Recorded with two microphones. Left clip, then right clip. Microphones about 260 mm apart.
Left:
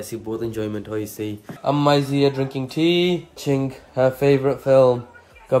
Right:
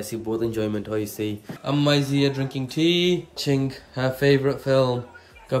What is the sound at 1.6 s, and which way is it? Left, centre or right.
Speech, left.